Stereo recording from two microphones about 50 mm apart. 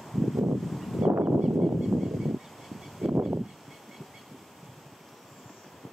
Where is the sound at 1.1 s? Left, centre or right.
Right.